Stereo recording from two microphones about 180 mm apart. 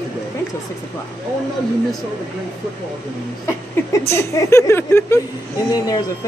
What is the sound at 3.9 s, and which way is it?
Speech, 15° left (ahead or behind).